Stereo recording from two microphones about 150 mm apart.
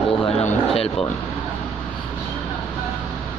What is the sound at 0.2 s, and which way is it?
Speech, 45° left (ahead or behind).